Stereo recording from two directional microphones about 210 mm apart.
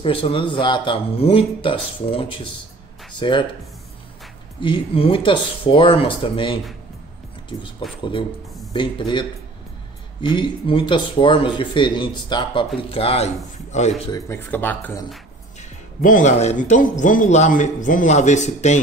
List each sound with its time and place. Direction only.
0.0 s speech: 25° left (ahead or behind)
4.6 s speech: 25° left (ahead or behind)
8.0 s speech: 25° left (ahead or behind)
10.2 s speech: 20° left (ahead or behind)
14.1 s speech: 10° left (ahead or behind)
16.0 s a man's voice: 40° left (ahead or behind)